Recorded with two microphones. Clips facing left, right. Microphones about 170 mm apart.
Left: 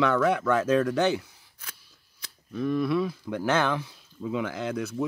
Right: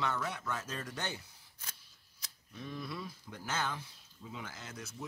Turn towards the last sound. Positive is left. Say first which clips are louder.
# left 17 dB
turn(degrees=65)  # may be behind; listen again after turning